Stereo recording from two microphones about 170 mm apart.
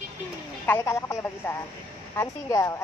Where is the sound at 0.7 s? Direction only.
15° left (ahead or behind).